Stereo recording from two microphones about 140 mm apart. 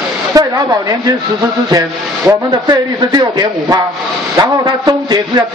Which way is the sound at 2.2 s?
30° right (ahead or behind).